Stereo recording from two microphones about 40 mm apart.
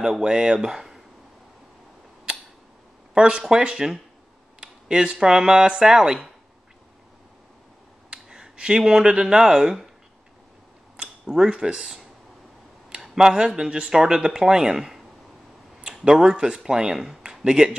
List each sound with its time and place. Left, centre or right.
0.2 s speech: centre
3.2 s speech: right
8.1 s speech: right
11.0 s speech: centre
12.9 s a sound: centre
13.6 s speech: centre
17.2 s a sound: centre